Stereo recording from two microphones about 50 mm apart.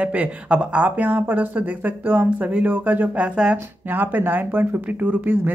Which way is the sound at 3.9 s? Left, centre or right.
Right.